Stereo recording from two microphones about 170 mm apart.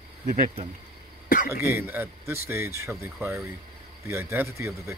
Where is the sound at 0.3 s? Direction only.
45° right (ahead or behind).